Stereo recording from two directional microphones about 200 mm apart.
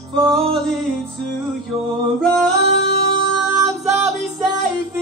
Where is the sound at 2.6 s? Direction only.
55° left (ahead or behind).